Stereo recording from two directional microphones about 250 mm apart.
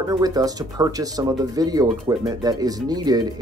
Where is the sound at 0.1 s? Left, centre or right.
Centre.